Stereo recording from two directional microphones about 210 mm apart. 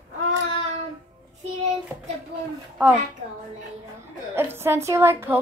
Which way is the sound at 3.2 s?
35° right (ahead or behind).